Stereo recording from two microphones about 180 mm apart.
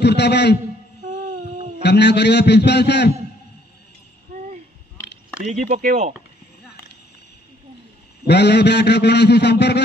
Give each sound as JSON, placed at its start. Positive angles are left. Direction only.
{"t": 0.0, "sound": "a man's voice", "side_deg": 70}
{"t": 1.8, "sound": "a man's voice", "side_deg": 70}
{"t": 5.5, "sound": "speech", "side_deg": -40}
{"t": 8.3, "sound": "a man's voice", "side_deg": 70}